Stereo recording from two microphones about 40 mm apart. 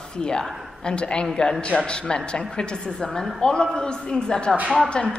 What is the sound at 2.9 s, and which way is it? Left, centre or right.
A woman's voice, centre.